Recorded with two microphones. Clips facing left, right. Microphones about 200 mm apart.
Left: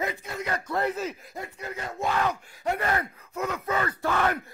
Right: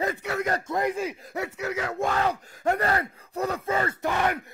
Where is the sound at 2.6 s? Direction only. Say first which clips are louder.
Right 3 dB; 40° right (ahead or behind); by 4.4 s 15° right (ahead or behind).